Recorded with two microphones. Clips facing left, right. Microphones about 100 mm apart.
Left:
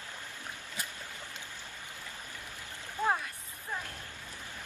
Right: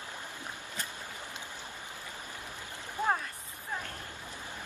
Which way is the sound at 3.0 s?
20° right (ahead or behind).